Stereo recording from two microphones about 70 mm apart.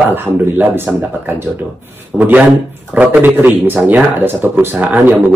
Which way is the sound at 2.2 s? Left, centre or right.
Right.